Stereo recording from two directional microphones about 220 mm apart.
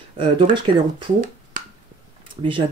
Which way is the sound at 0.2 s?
20° right (ahead or behind).